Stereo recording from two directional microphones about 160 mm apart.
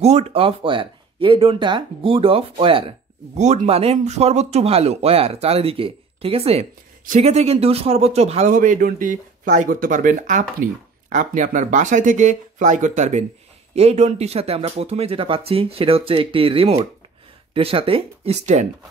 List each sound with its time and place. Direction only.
0.0 s speech: 40° right (ahead or behind)
3.3 s speech: 45° right (ahead or behind)